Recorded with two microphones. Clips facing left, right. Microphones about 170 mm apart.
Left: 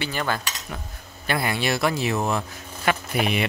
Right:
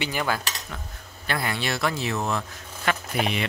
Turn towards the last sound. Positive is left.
turn(degrees=10)  # may be behind; listen again after turning